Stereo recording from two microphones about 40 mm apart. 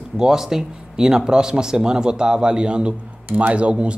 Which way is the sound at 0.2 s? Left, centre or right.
Centre.